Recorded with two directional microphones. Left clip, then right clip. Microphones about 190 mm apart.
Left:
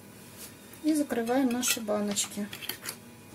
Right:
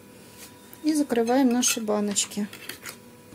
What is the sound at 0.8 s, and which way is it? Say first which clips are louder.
Speech: right 5 dB; 50° right (ahead or behind).